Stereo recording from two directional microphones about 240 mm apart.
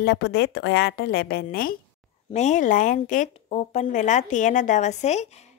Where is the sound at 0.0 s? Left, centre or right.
Left.